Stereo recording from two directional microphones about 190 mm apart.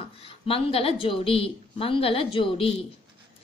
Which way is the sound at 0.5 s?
30° left (ahead or behind).